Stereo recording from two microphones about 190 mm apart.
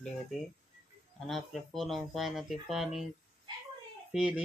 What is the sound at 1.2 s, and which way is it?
Speech, centre (ahead or behind).